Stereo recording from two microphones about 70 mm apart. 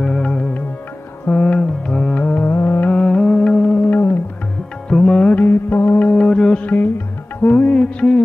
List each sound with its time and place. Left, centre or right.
0.0 s music: centre
2.4 s music: left
2.9 s music: centre
3.9 s music: left
4.8 s music: centre; by 6.0 s left
6.0 s music: centre